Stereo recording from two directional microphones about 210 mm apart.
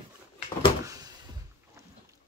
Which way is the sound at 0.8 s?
15° right (ahead or behind).